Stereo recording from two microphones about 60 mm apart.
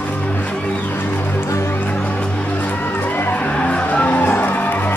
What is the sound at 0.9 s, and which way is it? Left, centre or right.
Music, left.